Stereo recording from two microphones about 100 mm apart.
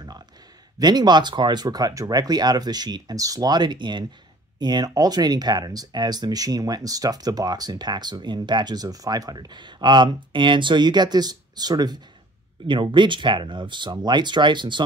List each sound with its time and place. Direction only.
0.7 s speech: 45° right (ahead or behind)